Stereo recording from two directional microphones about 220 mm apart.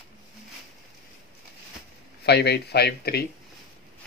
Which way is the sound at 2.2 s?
50° left (ahead or behind).